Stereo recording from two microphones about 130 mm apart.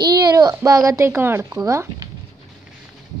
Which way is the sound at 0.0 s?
30° right (ahead or behind).